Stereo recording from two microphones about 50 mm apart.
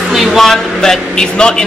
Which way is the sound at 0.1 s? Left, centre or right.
Centre.